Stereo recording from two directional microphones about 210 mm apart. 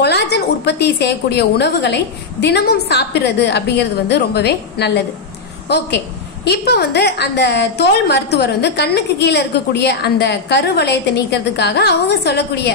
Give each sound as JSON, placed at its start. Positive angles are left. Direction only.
{"t": 0.0, "sound": "a woman's voice", "side_deg": 55}